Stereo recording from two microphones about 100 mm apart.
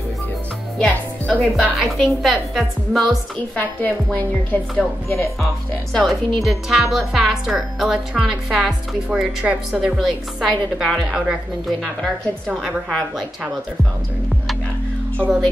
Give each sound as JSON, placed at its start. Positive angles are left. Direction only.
{"t": 0.7, "sound": "music", "side_deg": 10}
{"t": 1.6, "sound": "a woman's voice", "side_deg": 0}
{"t": 3.5, "sound": "a woman's voice", "side_deg": 15}
{"t": 5.9, "sound": "a woman's voice", "side_deg": 0}
{"t": 12.4, "sound": "a woman's voice", "side_deg": -5}